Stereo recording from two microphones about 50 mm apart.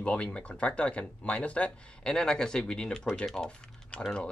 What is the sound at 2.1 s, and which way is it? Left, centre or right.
Speech, centre.